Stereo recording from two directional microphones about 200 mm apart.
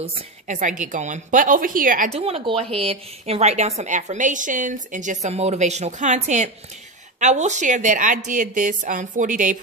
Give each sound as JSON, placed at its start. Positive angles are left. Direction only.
{"t": 0.0, "sound": "a woman's voice", "side_deg": -35}
{"t": 2.2, "sound": "a woman's voice", "side_deg": -30}